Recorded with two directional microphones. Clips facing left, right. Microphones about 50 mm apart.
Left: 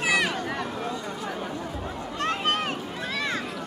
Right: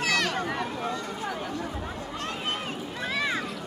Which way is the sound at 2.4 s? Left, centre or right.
Left.